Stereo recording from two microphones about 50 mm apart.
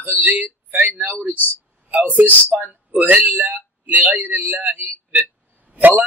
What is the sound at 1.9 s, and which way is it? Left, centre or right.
A man's voice, right.